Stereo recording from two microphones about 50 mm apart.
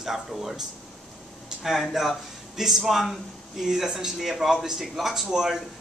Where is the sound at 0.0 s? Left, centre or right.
Centre.